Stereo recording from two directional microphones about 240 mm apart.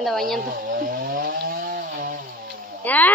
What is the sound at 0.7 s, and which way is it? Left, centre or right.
Chainsaw, right.